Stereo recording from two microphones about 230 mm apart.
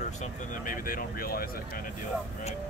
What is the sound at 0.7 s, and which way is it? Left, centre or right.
Speech, left.